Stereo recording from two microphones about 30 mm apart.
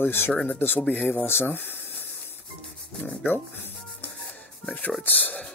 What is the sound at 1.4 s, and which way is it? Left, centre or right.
Speech, left.